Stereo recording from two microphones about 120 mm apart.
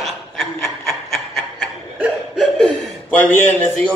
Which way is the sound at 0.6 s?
20° left (ahead or behind).